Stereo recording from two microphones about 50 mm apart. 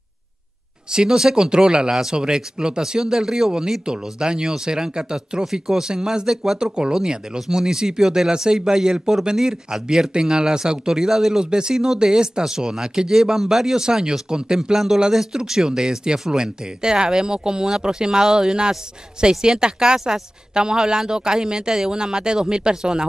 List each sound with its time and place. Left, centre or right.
0.8 s speech: centre